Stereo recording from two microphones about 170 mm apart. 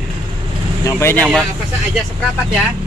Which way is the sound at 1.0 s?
15° left (ahead or behind).